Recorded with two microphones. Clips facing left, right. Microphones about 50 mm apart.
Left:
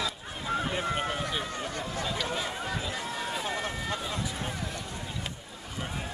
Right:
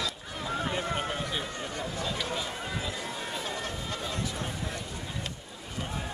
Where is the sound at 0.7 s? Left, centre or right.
Centre.